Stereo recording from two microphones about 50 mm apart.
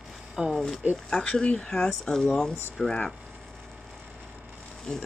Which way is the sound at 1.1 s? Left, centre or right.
Centre.